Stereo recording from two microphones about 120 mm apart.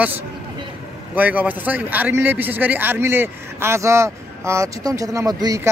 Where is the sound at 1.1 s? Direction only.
15° right (ahead or behind); by 5.7 s 30° right (ahead or behind).